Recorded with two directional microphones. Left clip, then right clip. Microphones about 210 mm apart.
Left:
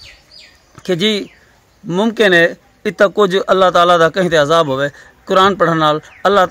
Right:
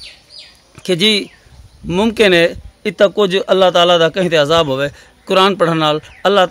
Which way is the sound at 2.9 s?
5° right (ahead or behind).